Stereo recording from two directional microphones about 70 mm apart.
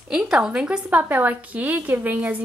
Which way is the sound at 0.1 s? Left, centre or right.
Centre.